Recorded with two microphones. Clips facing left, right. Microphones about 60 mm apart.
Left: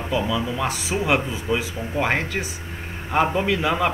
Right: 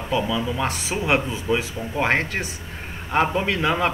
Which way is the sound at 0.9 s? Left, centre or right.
Right.